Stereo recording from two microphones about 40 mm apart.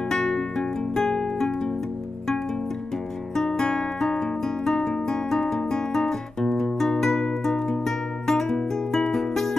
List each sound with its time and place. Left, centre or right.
0.1 s music: centre
3.3 s guitar: centre
8.9 s music: centre